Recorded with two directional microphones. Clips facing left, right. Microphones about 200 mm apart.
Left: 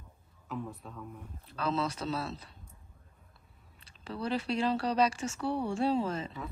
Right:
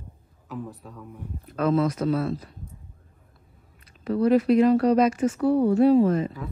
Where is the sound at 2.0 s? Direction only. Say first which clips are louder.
Right 11 dB; 50° right (ahead or behind).